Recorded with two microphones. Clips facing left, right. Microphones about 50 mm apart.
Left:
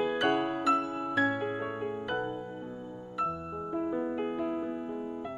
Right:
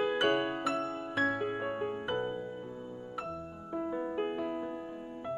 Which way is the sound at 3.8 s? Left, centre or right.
Centre.